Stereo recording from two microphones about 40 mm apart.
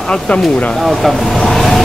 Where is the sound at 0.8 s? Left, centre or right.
Centre.